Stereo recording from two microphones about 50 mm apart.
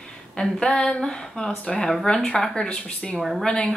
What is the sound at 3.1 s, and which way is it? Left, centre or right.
Speech, centre.